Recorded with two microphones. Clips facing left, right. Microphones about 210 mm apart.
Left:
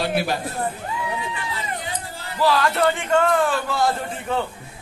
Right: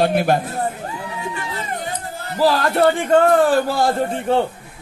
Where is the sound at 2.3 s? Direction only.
45° right (ahead or behind).